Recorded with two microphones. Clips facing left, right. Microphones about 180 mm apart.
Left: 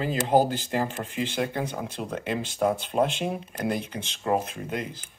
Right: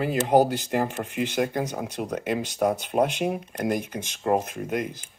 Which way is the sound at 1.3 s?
45° right (ahead or behind).